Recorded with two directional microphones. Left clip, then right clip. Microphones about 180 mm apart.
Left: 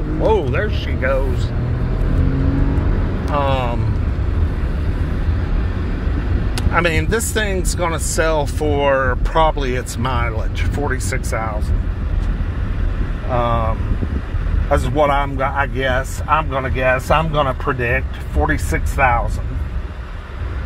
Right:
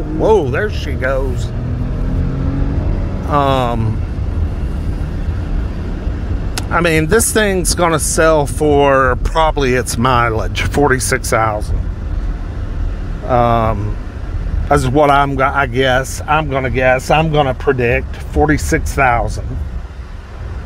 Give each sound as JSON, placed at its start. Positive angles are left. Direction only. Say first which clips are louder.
{"t": 0.2, "sound": "speech", "louder": "right 5 dB", "side_deg": -40}
{"t": 3.3, "sound": "speech", "louder": "right 6 dB", "side_deg": -50}
{"t": 6.5, "sound": "speech", "louder": "right 4 dB", "side_deg": -40}
{"t": 8.2, "sound": "speech", "louder": "right 6 dB", "side_deg": -35}
{"t": 13.3, "sound": "speech", "louder": "right 7 dB", "side_deg": -90}
{"t": 14.7, "sound": "speech", "louder": "right 5 dB", "side_deg": -90}